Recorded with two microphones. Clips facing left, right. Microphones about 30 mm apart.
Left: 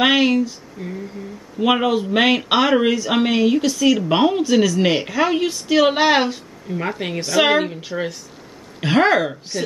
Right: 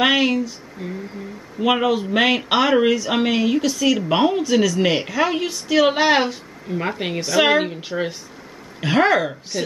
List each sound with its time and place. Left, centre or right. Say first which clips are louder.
0.0 s speech: left 2 dB; centre
0.8 s speech: even; centre
1.6 s speech: left 1 dB; centre
6.8 s a woman's voice: even; centre
8.8 s speech: left 1 dB; centre